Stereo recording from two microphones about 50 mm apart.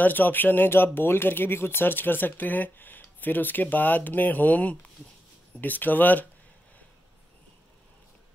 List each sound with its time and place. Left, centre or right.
0.0 s speech: left